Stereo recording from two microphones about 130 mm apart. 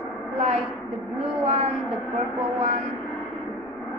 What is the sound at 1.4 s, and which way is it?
Speech, 55° right (ahead or behind).